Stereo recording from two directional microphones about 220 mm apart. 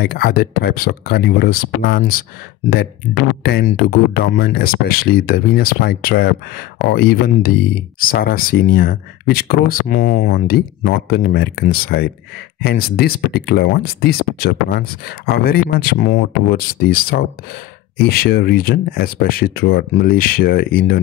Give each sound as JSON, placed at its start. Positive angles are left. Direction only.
{"t": 0.0, "sound": "speech", "side_deg": 45}
{"t": 3.4, "sound": "speech", "side_deg": 45}